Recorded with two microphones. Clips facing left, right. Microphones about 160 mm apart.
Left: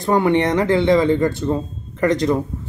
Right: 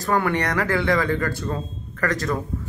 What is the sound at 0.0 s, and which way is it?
Speech, 20° left (ahead or behind).